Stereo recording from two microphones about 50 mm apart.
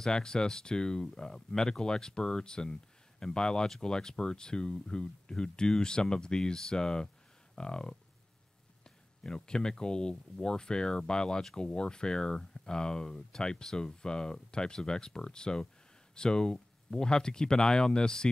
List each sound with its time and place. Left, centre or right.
0.0 s speech: centre
9.2 s speech: centre